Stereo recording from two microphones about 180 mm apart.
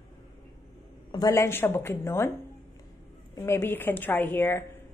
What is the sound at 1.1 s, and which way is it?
Speech, 15° left (ahead or behind).